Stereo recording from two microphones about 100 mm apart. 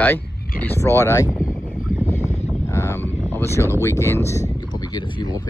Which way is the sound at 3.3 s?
25° left (ahead or behind).